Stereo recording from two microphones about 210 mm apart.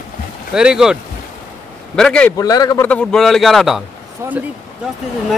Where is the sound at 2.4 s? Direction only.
15° left (ahead or behind).